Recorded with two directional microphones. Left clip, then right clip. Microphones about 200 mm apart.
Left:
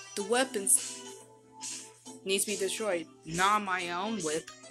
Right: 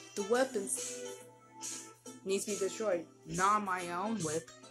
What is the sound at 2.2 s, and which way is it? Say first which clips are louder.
A woman's voice: left 4 dB; 10° left (ahead or behind).